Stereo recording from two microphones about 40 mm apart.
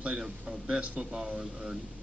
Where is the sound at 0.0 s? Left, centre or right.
Right.